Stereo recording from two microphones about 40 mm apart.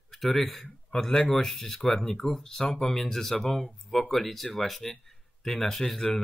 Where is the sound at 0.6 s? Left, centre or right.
Centre.